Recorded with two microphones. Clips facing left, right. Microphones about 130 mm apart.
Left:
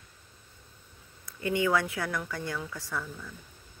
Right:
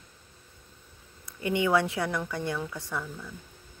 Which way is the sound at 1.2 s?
20° right (ahead or behind).